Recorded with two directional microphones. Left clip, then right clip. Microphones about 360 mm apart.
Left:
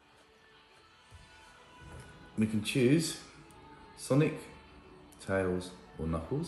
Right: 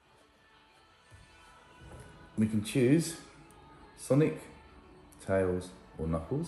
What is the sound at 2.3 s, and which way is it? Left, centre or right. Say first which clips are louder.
Speech: even; centre.